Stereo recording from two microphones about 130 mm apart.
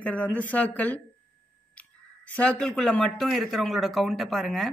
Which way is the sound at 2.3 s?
10° left (ahead or behind).